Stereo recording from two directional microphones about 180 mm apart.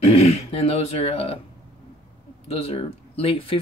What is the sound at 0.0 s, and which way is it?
Speech, 35° left (ahead or behind).